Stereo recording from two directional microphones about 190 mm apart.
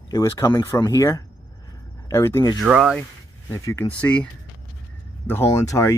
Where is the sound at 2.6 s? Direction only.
5° right (ahead or behind).